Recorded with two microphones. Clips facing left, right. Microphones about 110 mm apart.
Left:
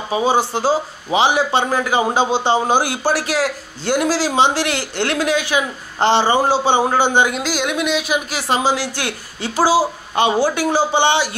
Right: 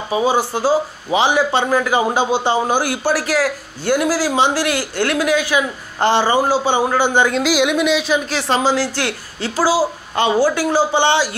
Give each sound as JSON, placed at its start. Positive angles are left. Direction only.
{"t": 0.1, "sound": "a man's voice", "side_deg": 25}
{"t": 7.4, "sound": "a woman's voice", "side_deg": 0}